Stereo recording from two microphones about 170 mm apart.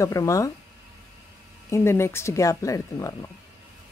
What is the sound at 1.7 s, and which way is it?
Speech, 15° left (ahead or behind).